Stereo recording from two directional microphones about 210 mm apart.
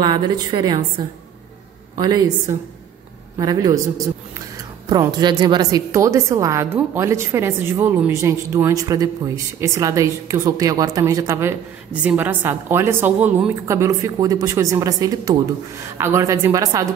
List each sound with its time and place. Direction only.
0.0 s a woman's voice: 20° right (ahead or behind)
4.8 s a woman's voice: 20° right (ahead or behind)